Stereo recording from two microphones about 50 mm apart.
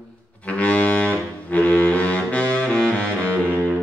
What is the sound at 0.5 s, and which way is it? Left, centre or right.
Music, left.